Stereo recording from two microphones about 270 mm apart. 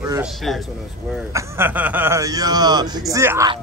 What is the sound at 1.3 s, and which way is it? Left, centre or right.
A man's voice, centre.